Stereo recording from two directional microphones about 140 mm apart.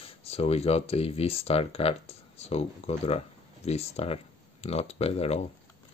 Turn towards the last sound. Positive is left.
turn(degrees=45)  # may be behind; listen again after turning